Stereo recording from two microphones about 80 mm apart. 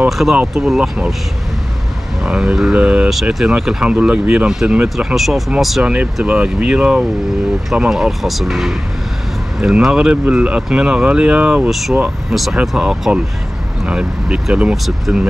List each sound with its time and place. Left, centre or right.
0.4 s speech: centre
2.2 s speech: centre
6.2 s speech: centre
14.9 s speech: centre